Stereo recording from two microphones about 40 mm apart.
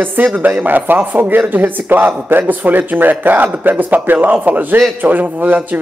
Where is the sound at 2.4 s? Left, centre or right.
Right.